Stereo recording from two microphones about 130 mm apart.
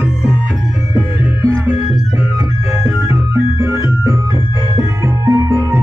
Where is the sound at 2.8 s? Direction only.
15° right (ahead or behind).